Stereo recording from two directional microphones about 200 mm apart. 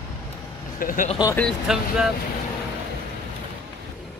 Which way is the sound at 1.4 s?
Centre (ahead or behind).